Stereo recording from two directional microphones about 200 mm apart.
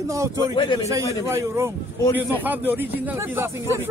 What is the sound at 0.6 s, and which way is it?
Speech, 25° left (ahead or behind).